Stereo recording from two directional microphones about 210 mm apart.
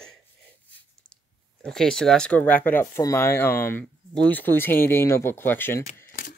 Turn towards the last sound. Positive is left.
turn(degrees=10)  # may be behind; listen again after turning